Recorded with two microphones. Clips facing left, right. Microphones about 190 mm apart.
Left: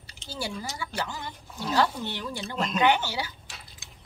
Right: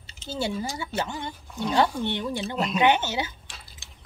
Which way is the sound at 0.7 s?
25° right (ahead or behind).